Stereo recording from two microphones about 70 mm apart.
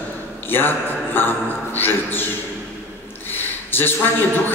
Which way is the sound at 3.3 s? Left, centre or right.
Left.